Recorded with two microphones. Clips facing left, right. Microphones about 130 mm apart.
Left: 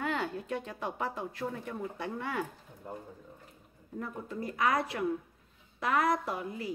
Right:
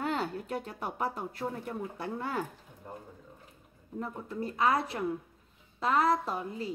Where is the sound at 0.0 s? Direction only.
35° right (ahead or behind).